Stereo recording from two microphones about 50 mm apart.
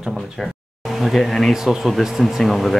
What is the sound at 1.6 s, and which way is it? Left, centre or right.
Speech, centre.